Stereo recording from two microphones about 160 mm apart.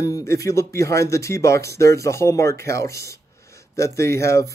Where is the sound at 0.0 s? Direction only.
20° left (ahead or behind).